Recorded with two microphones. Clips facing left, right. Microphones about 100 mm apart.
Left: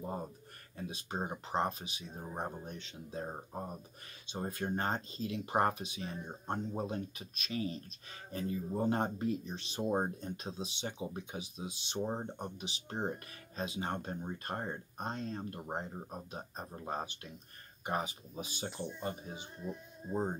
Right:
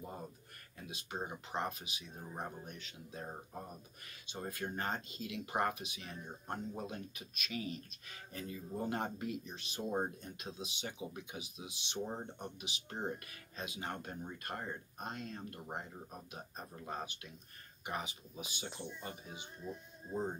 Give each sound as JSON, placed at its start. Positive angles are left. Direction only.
{"t": 0.7, "sound": "speech", "side_deg": 35}